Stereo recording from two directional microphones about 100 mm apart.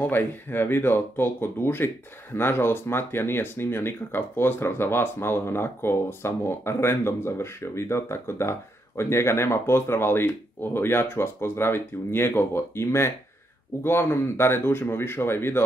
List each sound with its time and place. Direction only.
0.0 s speech: 20° left (ahead or behind)